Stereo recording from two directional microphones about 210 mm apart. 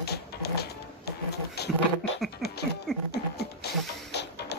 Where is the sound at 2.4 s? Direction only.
50° left (ahead or behind).